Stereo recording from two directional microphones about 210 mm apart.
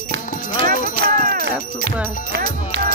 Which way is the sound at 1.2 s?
45° right (ahead or behind).